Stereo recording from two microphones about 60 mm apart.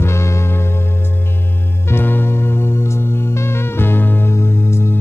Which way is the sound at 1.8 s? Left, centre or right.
Left.